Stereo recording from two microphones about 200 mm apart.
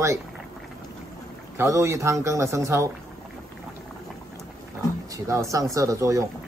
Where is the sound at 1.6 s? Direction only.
15° right (ahead or behind).